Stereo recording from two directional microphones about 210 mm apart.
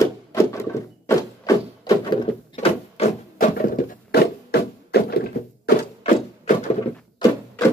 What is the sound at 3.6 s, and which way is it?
Music, 40° left (ahead or behind).